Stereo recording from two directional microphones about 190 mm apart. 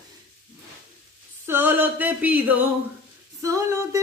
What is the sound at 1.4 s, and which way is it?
Music, 10° right (ahead or behind).